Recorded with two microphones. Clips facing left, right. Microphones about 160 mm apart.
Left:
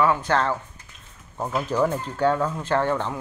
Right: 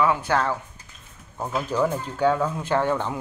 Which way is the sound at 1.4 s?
5° left (ahead or behind).